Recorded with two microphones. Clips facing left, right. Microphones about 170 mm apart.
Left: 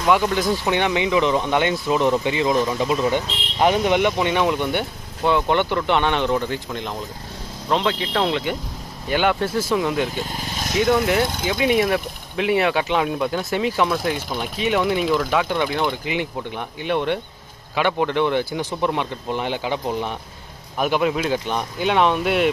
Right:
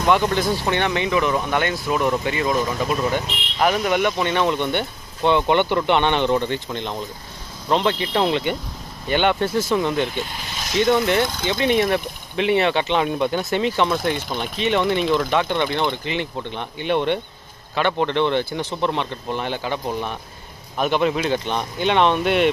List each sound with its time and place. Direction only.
0.0 s speech: 5° left (ahead or behind)
10.1 s speech: 45° left (ahead or behind)
10.8 s speech: 5° left (ahead or behind)